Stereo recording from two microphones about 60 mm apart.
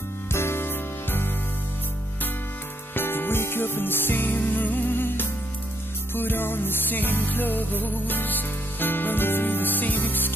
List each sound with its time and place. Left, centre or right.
0.3 s music: left
2.9 s music: left